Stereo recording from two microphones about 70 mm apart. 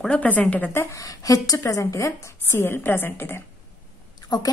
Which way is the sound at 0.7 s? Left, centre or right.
Left.